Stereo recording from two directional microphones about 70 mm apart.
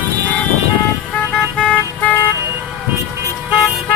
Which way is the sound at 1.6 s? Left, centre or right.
Centre.